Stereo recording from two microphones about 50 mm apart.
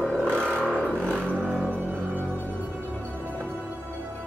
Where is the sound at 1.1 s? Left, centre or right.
Right.